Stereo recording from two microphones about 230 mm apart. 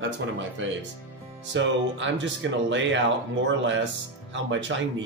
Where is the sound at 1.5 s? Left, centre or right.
Right.